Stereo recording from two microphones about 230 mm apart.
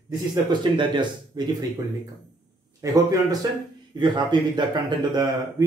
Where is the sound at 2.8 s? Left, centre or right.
Centre.